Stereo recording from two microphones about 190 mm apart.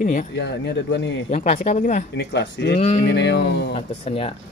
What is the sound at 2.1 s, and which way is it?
Speech, 65° left (ahead or behind).